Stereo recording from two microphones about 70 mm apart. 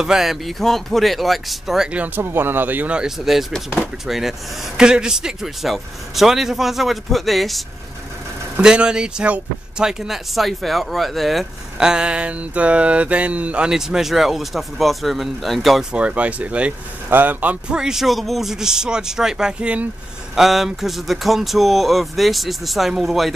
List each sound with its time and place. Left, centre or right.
0.0 s speech: centre
1.9 s speech: centre
2.2 s speech: right
3.0 s speech: centre
8.5 s speech: centre
13.7 s speech: centre
15.9 s speech: centre
20.3 s speech: centre